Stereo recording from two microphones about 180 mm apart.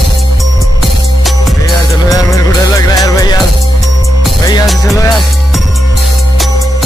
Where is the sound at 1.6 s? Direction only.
20° left (ahead or behind).